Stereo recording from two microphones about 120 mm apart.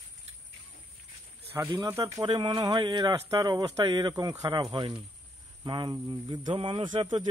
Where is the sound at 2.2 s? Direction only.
40° right (ahead or behind).